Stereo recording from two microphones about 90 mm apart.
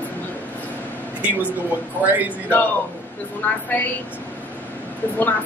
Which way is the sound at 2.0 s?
20° right (ahead or behind).